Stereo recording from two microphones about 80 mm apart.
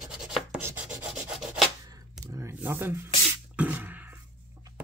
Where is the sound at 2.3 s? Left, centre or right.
Right.